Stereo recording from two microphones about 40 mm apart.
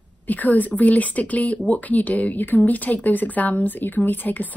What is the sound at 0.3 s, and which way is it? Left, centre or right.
Speech, left.